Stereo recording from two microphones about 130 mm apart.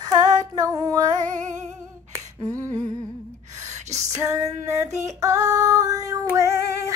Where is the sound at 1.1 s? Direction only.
75° right (ahead or behind).